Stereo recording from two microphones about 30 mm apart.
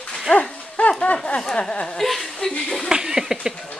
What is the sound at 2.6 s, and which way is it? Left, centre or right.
Speech, centre.